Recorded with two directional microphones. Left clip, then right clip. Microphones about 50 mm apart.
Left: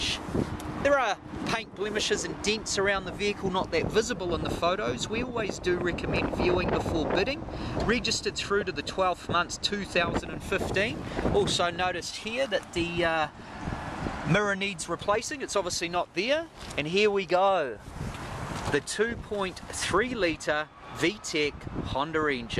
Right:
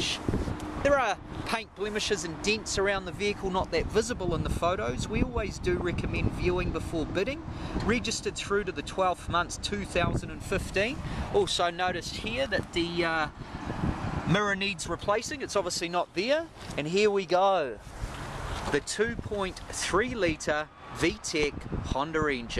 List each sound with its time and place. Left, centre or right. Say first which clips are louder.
0.8 s speech: left 1 dB; right; by 10.6 s centre
10.7 s speech: right 1 dB; right
11.3 s speech: right 1 dB; right
11.9 s speech: even; centre
14.3 s speech: left 1 dB; centre
14.9 s speech: left 2 dB; centre
15.6 s speech: even; right
17.4 s speech: left 1 dB; centre
18.7 s speech: left 1 dB; centre
21.0 s speech: even; right
21.5 s speech: left 1 dB; right